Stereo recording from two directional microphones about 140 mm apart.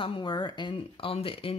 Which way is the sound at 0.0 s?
35° left (ahead or behind).